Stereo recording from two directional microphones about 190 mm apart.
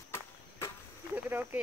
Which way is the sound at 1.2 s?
10° right (ahead or behind).